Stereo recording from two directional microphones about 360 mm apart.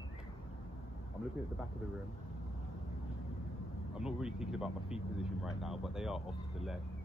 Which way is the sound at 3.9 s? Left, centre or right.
Centre.